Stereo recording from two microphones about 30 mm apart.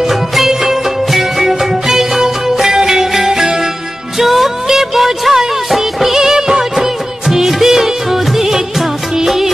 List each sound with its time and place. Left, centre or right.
0.0 s music: centre
0.5 s music: centre